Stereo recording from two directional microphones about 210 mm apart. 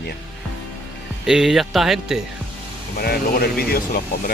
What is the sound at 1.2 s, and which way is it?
Speech, centre (ahead or behind).